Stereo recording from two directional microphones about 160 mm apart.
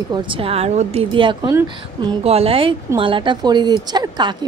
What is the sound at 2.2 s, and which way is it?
A woman's voice, 40° right (ahead or behind).